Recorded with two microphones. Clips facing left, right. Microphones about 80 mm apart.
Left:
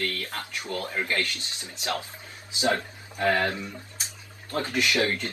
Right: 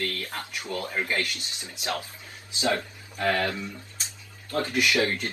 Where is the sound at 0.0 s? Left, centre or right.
Right.